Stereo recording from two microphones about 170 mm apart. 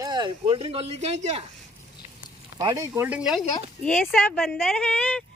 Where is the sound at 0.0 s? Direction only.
25° right (ahead or behind).